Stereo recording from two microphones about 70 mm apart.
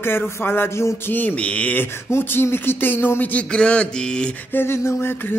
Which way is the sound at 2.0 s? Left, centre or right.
Left.